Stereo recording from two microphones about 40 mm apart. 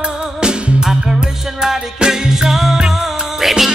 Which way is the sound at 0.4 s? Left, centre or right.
Right.